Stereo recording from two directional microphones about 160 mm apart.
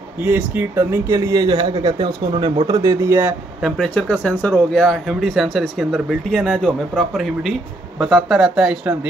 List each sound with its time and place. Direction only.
0.2 s speech: 10° right (ahead or behind)
3.6 s speech: 5° left (ahead or behind)